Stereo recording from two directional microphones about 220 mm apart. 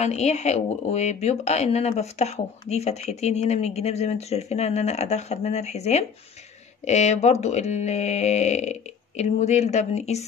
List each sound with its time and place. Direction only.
0.0 s speech: 30° left (ahead or behind)